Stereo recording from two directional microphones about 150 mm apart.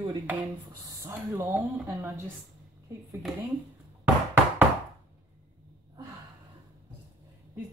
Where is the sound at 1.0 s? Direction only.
15° right (ahead or behind).